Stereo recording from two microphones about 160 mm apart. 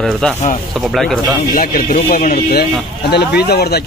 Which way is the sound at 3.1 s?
90° left.